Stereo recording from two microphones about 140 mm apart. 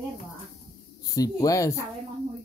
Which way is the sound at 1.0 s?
25° left (ahead or behind).